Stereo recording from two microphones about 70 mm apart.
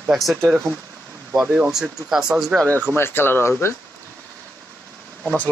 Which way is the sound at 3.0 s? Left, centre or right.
Left.